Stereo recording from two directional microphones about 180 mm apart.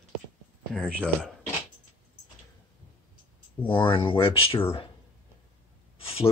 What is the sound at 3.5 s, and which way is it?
Speech, 10° left (ahead or behind).